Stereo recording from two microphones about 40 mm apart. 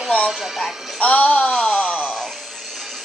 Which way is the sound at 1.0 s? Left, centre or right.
Left.